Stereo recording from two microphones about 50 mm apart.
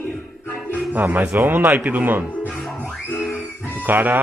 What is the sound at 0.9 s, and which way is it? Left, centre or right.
Speech, right.